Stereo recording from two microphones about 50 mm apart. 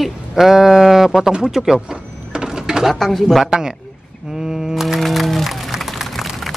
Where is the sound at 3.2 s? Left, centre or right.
Centre.